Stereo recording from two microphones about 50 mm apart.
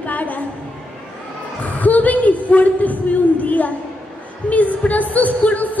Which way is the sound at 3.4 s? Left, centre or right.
Left.